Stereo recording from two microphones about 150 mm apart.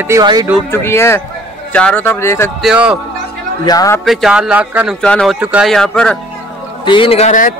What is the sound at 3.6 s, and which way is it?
Speech, 25° left (ahead or behind).